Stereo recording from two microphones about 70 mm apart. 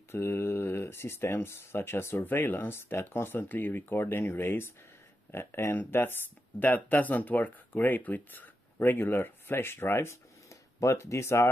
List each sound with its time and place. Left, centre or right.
0.1 s speech: left